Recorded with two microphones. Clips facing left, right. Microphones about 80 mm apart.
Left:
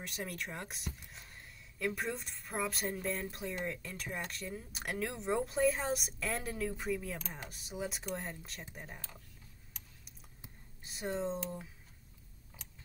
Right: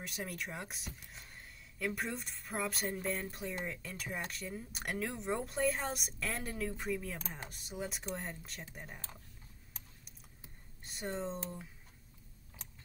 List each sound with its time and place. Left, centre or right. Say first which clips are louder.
0.0 s speech: even; centre
10.8 s speech: left 3 dB; centre